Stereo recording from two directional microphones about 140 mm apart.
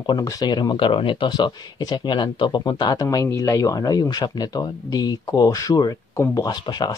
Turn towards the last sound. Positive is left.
turn(degrees=30)  # may be behind; listen again after turning